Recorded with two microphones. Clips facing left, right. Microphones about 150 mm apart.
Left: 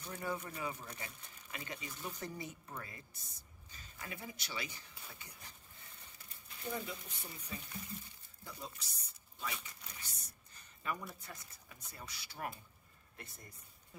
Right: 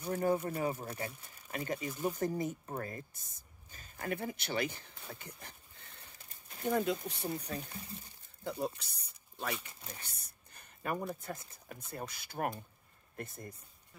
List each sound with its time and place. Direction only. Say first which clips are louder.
0.0 s speech: right 10 dB; 45° right (ahead or behind); by 8.9 s 60° right (ahead or behind)
9.9 s speech: right 1 dB; 55° right (ahead or behind)